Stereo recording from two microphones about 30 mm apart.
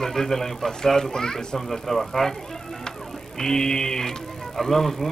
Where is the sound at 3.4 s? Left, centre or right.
Centre.